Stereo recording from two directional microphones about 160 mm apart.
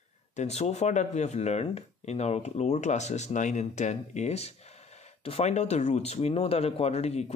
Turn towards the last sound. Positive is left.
turn(degrees=40)  # may be behind; listen again after turning